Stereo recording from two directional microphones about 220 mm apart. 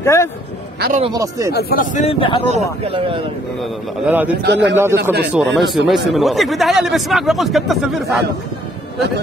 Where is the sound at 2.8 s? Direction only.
25° right (ahead or behind).